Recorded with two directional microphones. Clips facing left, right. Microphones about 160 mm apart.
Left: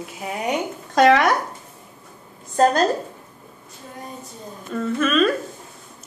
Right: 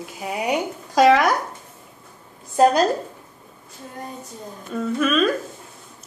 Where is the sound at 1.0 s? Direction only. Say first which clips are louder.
Even; centre (ahead or behind).